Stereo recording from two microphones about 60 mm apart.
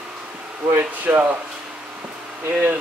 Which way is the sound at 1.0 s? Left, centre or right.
Right.